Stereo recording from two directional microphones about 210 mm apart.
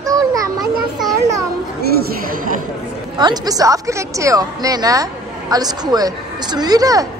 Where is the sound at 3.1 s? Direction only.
20° right (ahead or behind).